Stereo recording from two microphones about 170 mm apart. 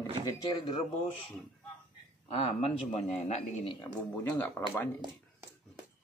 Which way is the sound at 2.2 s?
35° left (ahead or behind).